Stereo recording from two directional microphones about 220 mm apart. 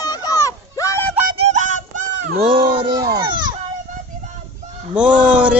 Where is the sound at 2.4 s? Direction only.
20° right (ahead or behind).